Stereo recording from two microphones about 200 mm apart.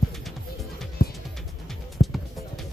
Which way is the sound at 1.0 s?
45° left (ahead or behind).